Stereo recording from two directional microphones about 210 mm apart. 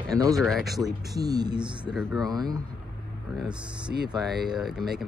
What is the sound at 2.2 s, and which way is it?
Speech, 20° right (ahead or behind).